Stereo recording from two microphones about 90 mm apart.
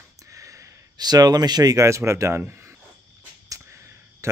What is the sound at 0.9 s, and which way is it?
Speech, 50° right (ahead or behind).